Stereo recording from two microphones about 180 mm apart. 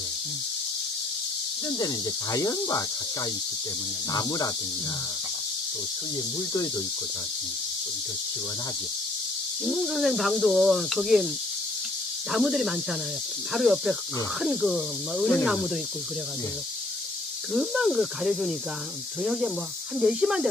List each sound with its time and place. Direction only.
2.3 s speech: 20° left (ahead or behind)
4.1 s speech: 20° left (ahead or behind)
9.7 s speech: centre (ahead or behind)
12.3 s speech: centre (ahead or behind)
17.5 s speech: centre (ahead or behind)